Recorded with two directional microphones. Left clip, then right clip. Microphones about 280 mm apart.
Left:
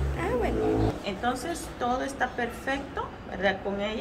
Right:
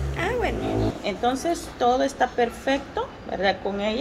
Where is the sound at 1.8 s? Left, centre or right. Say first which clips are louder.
Right 7 dB; right.